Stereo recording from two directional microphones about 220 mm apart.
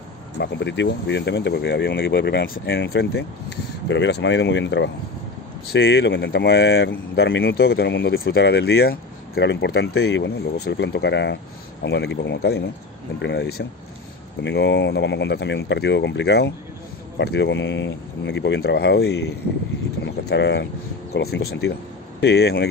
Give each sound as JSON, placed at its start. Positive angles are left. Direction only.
{"t": 0.4, "sound": "speech", "side_deg": 55}